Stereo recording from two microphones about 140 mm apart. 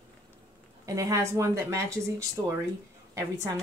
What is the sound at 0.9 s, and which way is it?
Speech, 20° right (ahead or behind).